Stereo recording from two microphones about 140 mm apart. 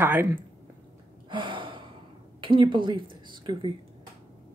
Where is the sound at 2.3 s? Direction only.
35° right (ahead or behind).